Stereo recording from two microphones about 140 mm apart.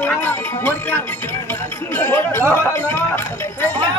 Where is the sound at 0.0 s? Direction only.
15° left (ahead or behind).